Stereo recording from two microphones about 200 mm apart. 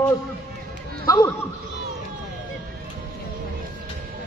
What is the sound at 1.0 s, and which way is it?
Speech, 20° left (ahead or behind).